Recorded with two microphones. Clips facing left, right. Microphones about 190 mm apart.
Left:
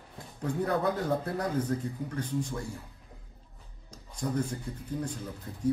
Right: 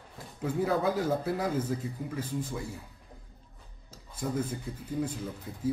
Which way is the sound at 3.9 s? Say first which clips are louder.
Left 1 dB; 5° right (ahead or behind).